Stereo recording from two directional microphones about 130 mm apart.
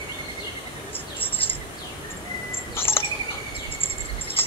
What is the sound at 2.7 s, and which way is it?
Cricket, 20° left (ahead or behind).